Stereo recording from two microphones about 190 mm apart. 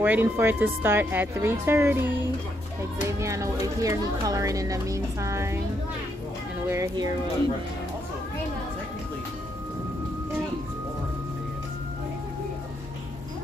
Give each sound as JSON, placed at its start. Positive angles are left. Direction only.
{"t": 0.0, "sound": "speech", "side_deg": -10}
{"t": 3.1, "sound": "speech", "side_deg": -15}
{"t": 6.7, "sound": "speech", "side_deg": -20}